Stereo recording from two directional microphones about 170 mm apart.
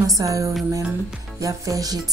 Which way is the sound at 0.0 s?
20° right (ahead or behind).